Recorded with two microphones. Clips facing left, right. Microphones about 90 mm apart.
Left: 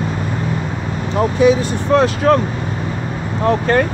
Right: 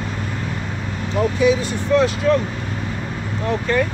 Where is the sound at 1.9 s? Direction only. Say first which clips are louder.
Left 3 dB; 50° left (ahead or behind).